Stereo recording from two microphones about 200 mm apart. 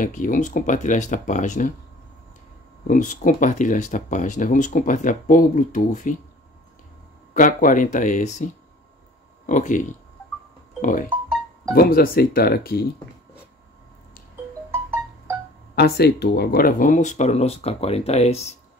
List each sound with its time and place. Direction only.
0.0 s speech: 40° left (ahead or behind)
2.9 s speech: 40° left (ahead or behind)
7.3 s speech: 40° left (ahead or behind)
9.5 s speech: 40° left (ahead or behind)
10.8 s music: 40° left (ahead or behind)
11.7 s speech: 45° left (ahead or behind)
14.7 s music: 15° right (ahead or behind)
15.7 s speech: 55° left (ahead or behind); by 18.5 s 30° left (ahead or behind)